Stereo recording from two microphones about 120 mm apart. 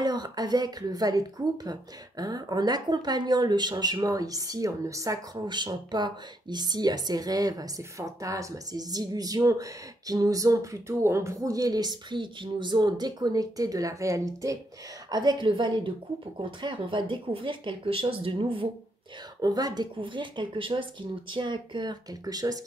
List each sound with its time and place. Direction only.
0.0 s speech: 35° right (ahead or behind)
19.4 s speech: 35° right (ahead or behind)